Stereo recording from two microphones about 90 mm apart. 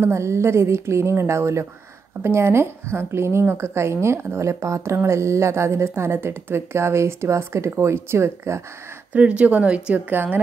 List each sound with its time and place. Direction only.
0.0 s a woman's voice: 30° right (ahead or behind)
9.1 s a woman's voice: 15° right (ahead or behind)